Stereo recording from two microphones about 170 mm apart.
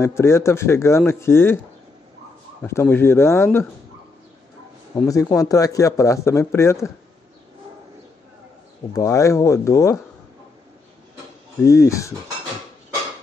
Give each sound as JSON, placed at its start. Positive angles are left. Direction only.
{"t": 0.0, "sound": "a man's voice", "side_deg": 15}
{"t": 2.6, "sound": "a man's voice", "side_deg": 15}
{"t": 5.0, "sound": "a man's voice", "side_deg": 20}
{"t": 8.9, "sound": "a man's voice", "side_deg": 15}
{"t": 11.6, "sound": "a man's voice", "side_deg": 15}